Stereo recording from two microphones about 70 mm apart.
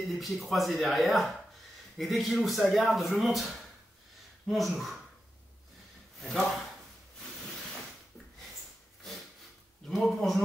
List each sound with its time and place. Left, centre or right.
0.0 s speech: centre
4.5 s speech: centre
9.8 s speech: centre